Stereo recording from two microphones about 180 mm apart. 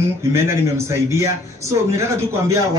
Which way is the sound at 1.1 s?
15° right (ahead or behind).